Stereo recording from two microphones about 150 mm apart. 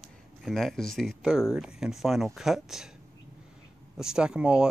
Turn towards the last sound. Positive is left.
turn(degrees=-5)  # may be behind; listen again after turning